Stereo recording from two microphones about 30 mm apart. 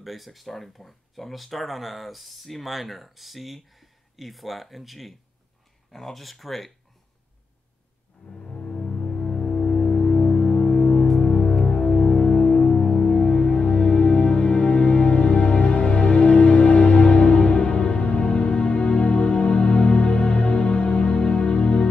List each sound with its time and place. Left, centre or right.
0.0 s speech: centre
5.9 s speech: centre
8.3 s music: left
9.2 s music: left